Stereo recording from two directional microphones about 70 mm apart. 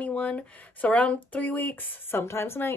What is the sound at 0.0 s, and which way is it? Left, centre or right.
Speech, centre.